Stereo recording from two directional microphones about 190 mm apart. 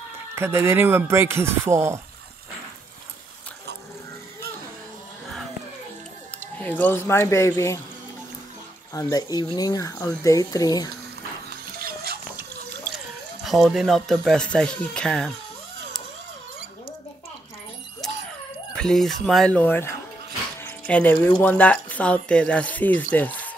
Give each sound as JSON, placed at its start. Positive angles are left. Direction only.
{"t": 0.4, "sound": "speech", "side_deg": -10}
{"t": 6.6, "sound": "speech", "side_deg": 10}
{"t": 8.9, "sound": "speech", "side_deg": 20}
{"t": 11.8, "sound": "a sound", "side_deg": -55}
{"t": 12.9, "sound": "speech", "side_deg": 0}
{"t": 18.8, "sound": "speech", "side_deg": 0}